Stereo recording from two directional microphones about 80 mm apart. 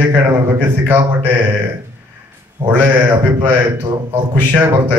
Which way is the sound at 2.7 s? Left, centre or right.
Right.